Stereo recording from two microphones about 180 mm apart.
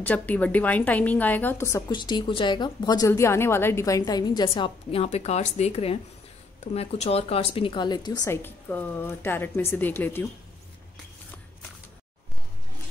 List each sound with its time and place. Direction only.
0.0 s a woman's voice: 10° left (ahead or behind)